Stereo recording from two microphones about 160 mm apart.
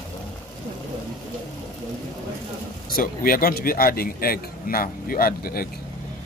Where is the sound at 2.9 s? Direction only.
60° left (ahead or behind).